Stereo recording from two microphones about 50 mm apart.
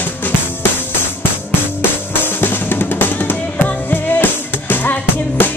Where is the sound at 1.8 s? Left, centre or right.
Left.